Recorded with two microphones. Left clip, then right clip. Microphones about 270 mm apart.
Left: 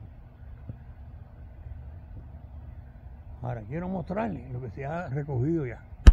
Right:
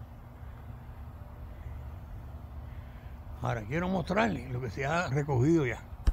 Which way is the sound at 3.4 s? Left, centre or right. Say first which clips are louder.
Right 3 dB; centre.